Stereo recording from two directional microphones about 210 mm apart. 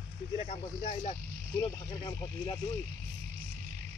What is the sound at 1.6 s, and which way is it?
Speech, 20° left (ahead or behind).